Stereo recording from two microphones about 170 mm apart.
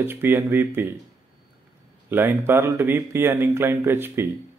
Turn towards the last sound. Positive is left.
turn(degrees=-15)  # may be behind; listen again after turning